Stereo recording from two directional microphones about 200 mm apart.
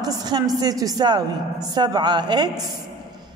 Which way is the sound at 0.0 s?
20° right (ahead or behind).